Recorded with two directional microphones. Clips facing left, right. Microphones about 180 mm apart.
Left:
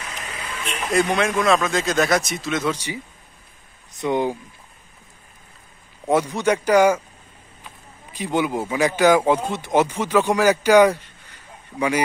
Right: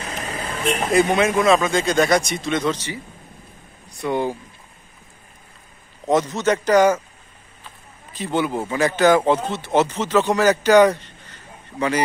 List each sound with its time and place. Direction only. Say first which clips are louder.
0.0 s vehicle: right 5 dB; 35° right (ahead or behind)
1.0 s speech: right 2 dB; centre (ahead or behind)
4.0 s speech: left 1 dB; 15° left (ahead or behind)
6.0 s speech: right 1 dB; 10° left (ahead or behind)